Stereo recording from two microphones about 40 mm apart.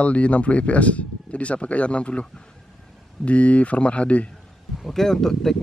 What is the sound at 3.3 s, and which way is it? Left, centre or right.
Speech, left.